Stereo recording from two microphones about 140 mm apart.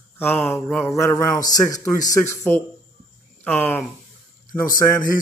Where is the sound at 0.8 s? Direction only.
20° left (ahead or behind).